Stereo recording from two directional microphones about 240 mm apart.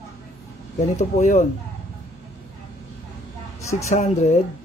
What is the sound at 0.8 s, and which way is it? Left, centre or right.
Speech, left.